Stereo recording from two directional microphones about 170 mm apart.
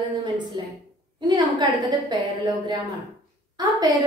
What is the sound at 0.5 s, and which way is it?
A woman's voice, 25° right (ahead or behind).